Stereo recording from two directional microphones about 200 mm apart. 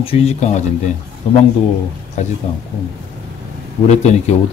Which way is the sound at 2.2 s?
35° left (ahead or behind).